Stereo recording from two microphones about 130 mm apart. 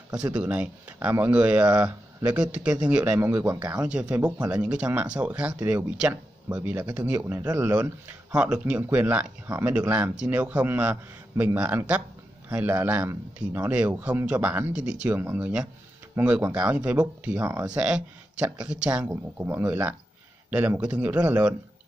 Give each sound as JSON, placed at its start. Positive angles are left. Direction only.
{"t": 0.1, "sound": "speech", "side_deg": -10}